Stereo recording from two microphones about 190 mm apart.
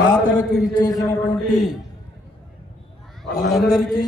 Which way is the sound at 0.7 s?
20° left (ahead or behind).